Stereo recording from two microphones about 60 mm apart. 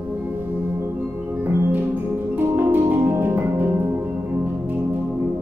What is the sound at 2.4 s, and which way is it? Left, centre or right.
Music, right.